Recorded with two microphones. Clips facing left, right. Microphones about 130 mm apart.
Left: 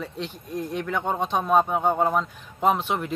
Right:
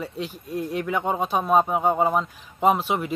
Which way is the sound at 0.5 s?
10° right (ahead or behind).